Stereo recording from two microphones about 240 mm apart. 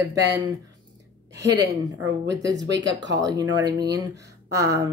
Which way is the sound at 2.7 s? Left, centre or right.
Right.